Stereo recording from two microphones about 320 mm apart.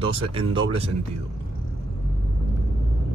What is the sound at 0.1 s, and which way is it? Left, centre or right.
Speech, centre.